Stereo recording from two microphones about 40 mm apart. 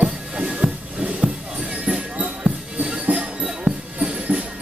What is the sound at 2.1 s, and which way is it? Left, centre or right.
Music, right.